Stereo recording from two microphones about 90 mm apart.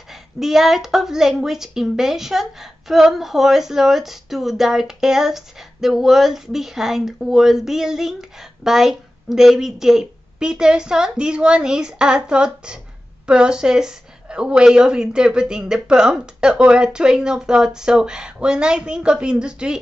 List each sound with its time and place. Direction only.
0.1 s a woman's voice: 5° right (ahead or behind)